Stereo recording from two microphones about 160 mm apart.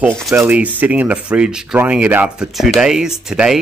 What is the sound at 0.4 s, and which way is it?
Speech, 10° right (ahead or behind).